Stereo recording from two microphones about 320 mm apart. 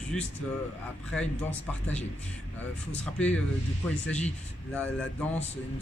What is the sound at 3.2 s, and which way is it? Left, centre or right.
Speech, centre.